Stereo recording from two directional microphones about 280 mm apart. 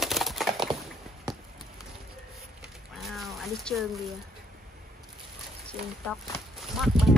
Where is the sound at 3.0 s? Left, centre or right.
Centre.